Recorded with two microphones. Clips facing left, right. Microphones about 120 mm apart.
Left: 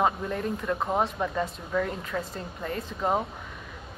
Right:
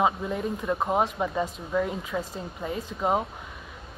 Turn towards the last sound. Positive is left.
turn(degrees=-10)  # may be behind; listen again after turning